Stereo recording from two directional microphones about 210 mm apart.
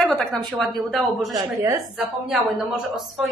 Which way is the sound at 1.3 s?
15° right (ahead or behind).